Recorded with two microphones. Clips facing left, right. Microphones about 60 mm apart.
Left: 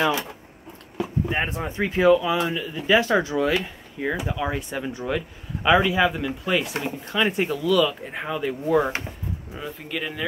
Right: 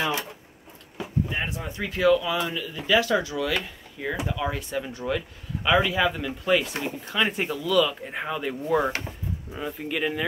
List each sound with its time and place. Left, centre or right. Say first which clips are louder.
1.3 s speech: left 5 dB; left
3.6 s speech: left 4 dB; centre